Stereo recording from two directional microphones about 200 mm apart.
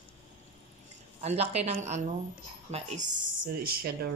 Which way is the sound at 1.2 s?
35° right (ahead or behind).